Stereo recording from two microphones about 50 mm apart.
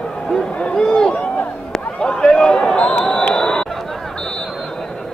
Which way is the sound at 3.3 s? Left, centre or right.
Centre.